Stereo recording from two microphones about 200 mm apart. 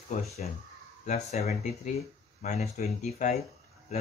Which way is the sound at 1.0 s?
35° left (ahead or behind).